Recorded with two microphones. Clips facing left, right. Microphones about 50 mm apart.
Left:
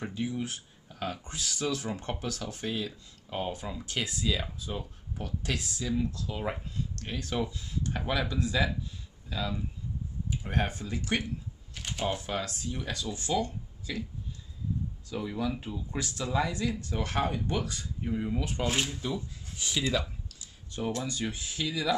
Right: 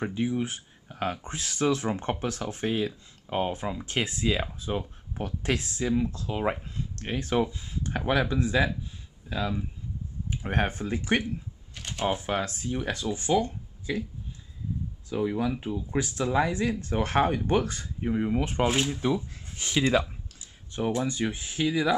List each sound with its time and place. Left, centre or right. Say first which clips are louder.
0.0 s speech: right 5 dB; right
11.7 s camera: right 3 dB; centre
12.1 s speech: right 7 dB; right
15.0 s speech: right 6 dB; right
21.0 s speech: right 5 dB; right